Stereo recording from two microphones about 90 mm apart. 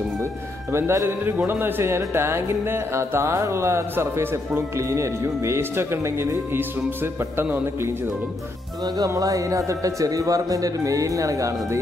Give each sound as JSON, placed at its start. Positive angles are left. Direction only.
{"t": 0.2, "sound": "a man's voice", "side_deg": -30}
{"t": 8.8, "sound": "speech", "side_deg": -40}